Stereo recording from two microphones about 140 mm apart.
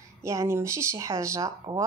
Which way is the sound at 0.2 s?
20° right (ahead or behind).